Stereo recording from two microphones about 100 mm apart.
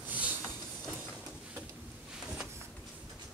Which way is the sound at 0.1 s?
15° right (ahead or behind).